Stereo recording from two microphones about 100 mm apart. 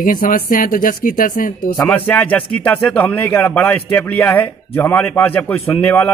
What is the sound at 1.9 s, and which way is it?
A man's voice, 10° left (ahead or behind).